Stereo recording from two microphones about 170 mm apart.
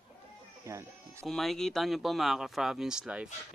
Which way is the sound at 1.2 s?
Centre (ahead or behind).